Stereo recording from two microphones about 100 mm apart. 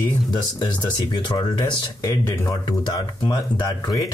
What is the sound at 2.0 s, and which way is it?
Speech, 30° left (ahead or behind).